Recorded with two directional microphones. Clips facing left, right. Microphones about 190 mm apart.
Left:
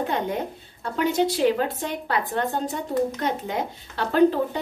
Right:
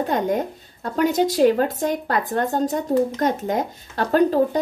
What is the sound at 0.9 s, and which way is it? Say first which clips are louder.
A woman's voice: right 4 dB; 45° right (ahead or behind).